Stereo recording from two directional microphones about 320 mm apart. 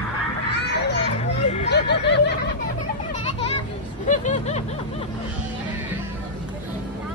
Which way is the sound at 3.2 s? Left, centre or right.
Centre.